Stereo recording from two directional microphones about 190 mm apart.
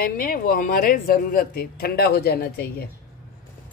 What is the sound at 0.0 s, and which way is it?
Speech, 50° left (ahead or behind).